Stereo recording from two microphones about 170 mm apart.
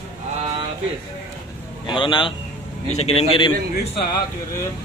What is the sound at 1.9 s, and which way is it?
A man's voice, 30° left (ahead or behind).